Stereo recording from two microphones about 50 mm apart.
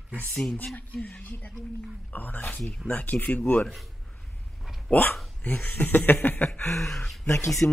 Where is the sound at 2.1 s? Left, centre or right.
Left.